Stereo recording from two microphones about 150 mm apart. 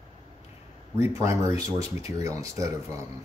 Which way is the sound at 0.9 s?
20° right (ahead or behind).